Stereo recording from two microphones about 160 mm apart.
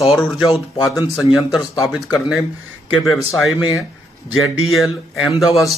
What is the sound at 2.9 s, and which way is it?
A man's voice, centre (ahead or behind).